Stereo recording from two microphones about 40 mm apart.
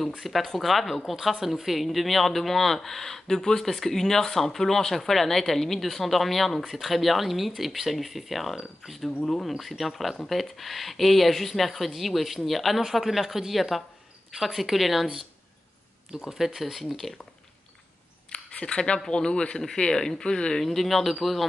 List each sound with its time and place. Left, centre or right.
0.2 s speech: centre
16.1 s speech: centre
16.9 s speech: centre
18.3 s a sound: left
19.0 s a man's voice: left
20.6 s speech: centre